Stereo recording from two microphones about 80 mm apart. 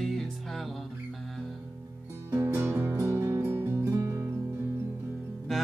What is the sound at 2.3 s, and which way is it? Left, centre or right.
Music, right.